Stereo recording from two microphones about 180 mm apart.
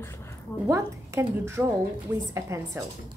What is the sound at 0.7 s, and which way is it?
A woman's voice, 15° right (ahead or behind).